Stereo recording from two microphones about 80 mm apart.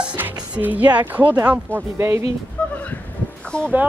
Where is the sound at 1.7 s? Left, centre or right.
Right.